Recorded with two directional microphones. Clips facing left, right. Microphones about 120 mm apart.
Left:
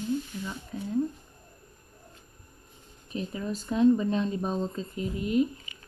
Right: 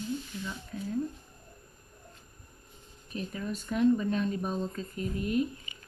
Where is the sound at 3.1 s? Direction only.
30° left (ahead or behind).